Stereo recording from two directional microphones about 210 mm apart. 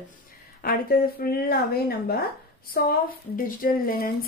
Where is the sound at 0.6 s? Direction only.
45° left (ahead or behind).